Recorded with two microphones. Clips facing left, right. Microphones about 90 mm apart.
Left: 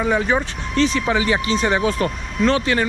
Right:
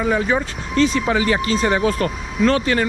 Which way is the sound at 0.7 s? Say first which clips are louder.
Right 1 dB; 40° right (ahead or behind).